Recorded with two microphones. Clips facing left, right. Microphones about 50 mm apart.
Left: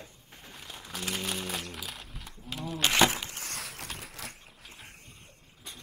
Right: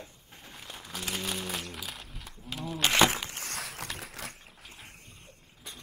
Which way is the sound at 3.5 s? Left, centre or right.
Right.